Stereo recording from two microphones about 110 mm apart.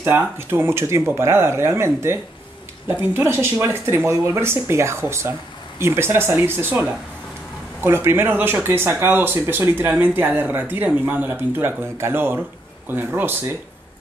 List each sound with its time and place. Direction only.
0.0 s speech: 20° right (ahead or behind)
7.8 s speech: 20° right (ahead or behind)